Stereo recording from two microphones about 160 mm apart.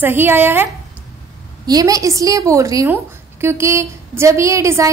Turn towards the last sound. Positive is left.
turn(degrees=-20)  # may be behind; listen again after turning